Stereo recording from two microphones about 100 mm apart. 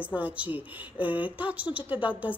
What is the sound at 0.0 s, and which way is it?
A woman's voice, 15° right (ahead or behind).